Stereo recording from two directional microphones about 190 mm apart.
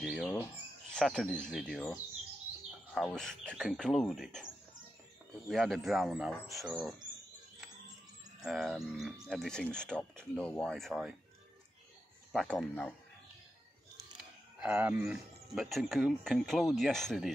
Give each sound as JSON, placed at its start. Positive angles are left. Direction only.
{"t": 0.0, "sound": "speech", "side_deg": 5}
{"t": 5.5, "sound": "speech", "side_deg": 0}
{"t": 8.4, "sound": "speech", "side_deg": 0}
{"t": 12.3, "sound": "speech", "side_deg": 0}
{"t": 14.6, "sound": "speech", "side_deg": -10}